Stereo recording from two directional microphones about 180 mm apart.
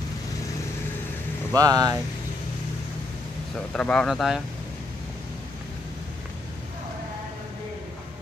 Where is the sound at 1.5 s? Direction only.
20° right (ahead or behind).